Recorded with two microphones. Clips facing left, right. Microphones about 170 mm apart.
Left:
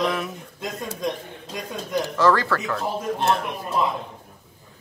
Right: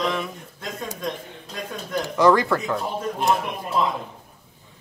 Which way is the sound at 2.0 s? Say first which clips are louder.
Right 3 dB; 15° right (ahead or behind).